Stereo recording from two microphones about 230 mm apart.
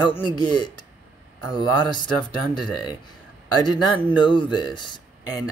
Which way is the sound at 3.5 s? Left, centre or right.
Centre.